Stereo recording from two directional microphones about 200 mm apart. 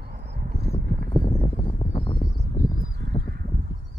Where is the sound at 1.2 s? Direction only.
15° left (ahead or behind).